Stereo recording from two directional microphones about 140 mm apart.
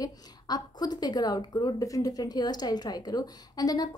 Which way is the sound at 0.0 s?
30° left (ahead or behind).